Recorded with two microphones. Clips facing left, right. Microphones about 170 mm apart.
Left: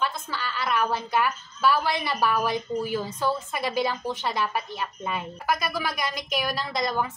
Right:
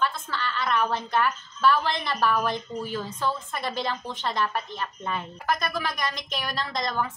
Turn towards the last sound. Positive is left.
turn(degrees=10)  # may be behind; listen again after turning